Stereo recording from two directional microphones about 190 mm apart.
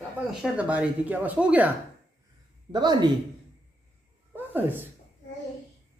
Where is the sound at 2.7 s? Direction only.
25° right (ahead or behind).